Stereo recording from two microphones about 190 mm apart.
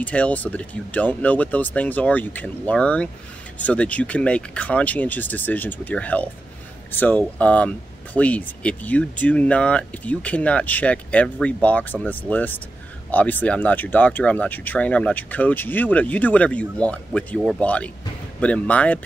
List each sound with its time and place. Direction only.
0.0 s speech: 5° left (ahead or behind)